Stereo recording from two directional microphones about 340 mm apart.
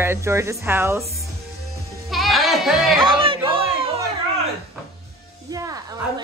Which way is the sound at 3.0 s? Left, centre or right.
Centre.